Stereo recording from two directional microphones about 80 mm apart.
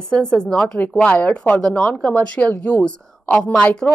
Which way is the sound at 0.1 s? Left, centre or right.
Centre.